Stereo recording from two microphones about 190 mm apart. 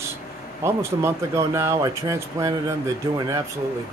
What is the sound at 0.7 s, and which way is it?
Speech, 15° right (ahead or behind).